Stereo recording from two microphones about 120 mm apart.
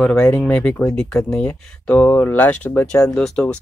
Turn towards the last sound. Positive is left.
turn(degrees=10)  # may be behind; listen again after turning